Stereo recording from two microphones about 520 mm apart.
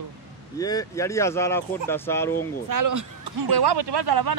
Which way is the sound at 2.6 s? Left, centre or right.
Right.